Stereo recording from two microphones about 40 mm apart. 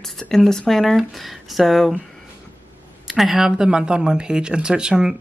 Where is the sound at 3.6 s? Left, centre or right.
Right.